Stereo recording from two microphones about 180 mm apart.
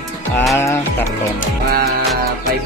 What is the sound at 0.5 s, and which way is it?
Speech, 15° left (ahead or behind).